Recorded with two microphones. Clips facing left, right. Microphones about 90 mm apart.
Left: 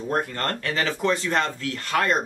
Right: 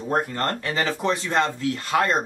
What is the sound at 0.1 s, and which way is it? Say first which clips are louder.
Speech: right 2 dB; 20° right (ahead or behind).